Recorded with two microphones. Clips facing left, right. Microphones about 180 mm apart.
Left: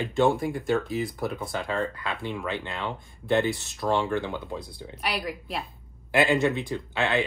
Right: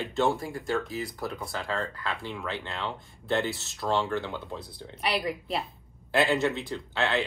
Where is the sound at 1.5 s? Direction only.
20° left (ahead or behind).